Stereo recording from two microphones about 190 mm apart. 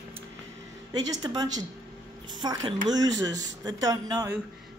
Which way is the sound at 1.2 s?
20° right (ahead or behind).